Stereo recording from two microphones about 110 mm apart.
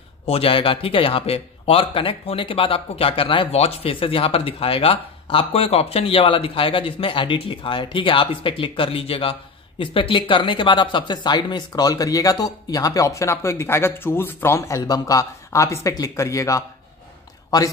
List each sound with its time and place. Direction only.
0.3 s speech: 55° left (ahead or behind); by 16.6 s 30° left (ahead or behind)